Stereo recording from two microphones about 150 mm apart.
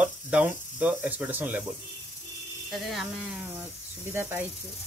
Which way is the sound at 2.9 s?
5° right (ahead or behind).